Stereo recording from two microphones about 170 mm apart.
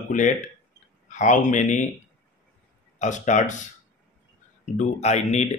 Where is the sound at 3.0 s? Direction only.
45° left (ahead or behind).